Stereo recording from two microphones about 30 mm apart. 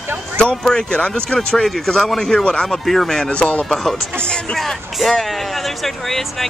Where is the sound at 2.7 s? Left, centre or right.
Centre.